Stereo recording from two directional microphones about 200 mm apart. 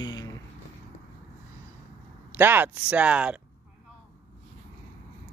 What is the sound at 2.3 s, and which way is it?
Speech, 10° right (ahead or behind).